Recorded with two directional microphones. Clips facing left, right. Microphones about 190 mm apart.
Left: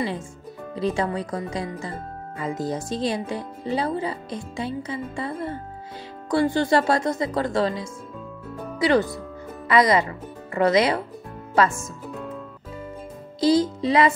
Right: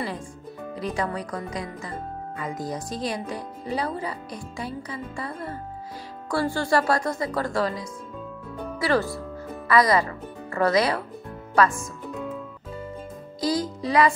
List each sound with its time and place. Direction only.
0.7 s speech: 25° left (ahead or behind)
13.4 s speech: 25° left (ahead or behind)